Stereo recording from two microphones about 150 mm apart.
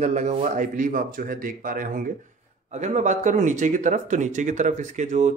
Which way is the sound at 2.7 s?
50° right (ahead or behind).